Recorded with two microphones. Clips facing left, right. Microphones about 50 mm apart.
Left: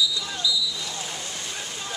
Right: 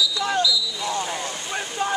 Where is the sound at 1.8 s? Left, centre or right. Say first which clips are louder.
Right 15 dB; right.